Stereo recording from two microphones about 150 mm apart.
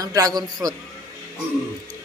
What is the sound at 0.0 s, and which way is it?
Speech, 25° right (ahead or behind).